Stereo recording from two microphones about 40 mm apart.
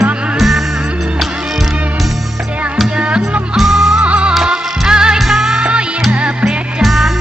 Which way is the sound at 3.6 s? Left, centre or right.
Centre.